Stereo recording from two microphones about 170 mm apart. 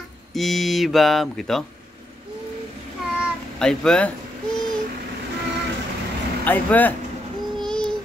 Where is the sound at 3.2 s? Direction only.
5° left (ahead or behind).